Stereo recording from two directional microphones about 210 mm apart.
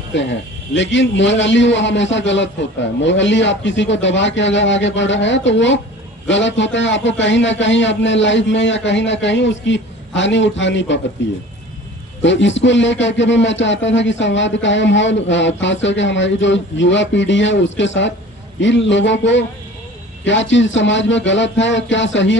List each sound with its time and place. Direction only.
0.1 s a man's voice: 60° left (ahead or behind)